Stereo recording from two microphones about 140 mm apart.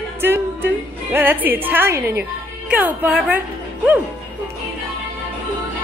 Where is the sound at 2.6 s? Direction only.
10° right (ahead or behind).